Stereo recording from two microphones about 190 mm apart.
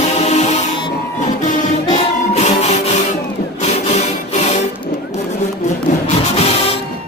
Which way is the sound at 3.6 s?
35° left (ahead or behind).